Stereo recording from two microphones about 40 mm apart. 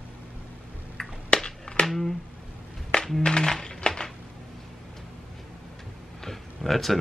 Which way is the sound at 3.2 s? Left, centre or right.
Left.